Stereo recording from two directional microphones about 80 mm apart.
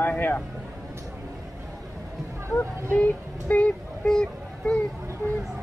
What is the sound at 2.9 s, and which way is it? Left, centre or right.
Speech, centre.